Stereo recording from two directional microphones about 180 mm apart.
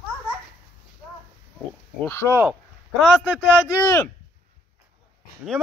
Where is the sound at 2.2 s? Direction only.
10° right (ahead or behind).